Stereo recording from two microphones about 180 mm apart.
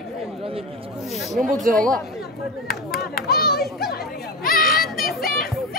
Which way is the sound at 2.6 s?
55° left (ahead or behind).